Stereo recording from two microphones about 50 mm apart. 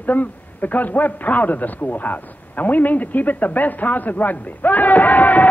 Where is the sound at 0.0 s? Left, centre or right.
Left.